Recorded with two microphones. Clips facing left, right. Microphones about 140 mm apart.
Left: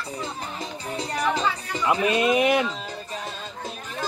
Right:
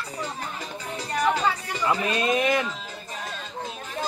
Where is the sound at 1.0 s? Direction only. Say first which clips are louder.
Right 1 dB; 20° left (ahead or behind).